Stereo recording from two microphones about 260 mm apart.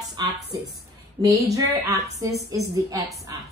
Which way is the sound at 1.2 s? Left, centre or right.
Centre.